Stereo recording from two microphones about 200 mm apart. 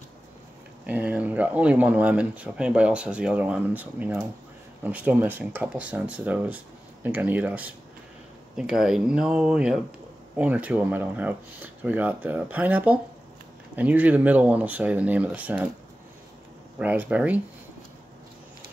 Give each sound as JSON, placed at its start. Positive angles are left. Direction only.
{"t": 0.8, "sound": "speech", "side_deg": -5}
{"t": 16.7, "sound": "speech", "side_deg": -5}